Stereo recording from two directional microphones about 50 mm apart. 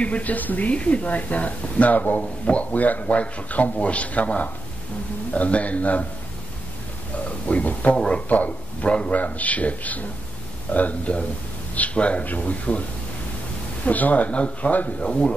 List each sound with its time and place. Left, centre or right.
0.0 s speech: left
7.4 s a man's voice: left
13.8 s speech: left